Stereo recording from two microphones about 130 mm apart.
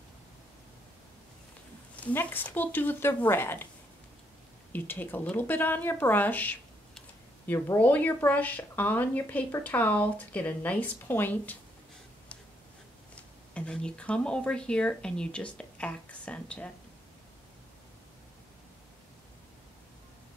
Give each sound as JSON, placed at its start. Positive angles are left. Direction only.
{"t": 2.0, "sound": "speech", "side_deg": 15}
{"t": 4.7, "sound": "speech", "side_deg": 15}
{"t": 13.1, "sound": "speech", "side_deg": 10}